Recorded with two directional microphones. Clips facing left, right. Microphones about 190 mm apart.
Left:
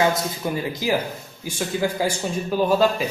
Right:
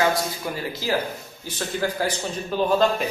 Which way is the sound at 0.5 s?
15° left (ahead or behind).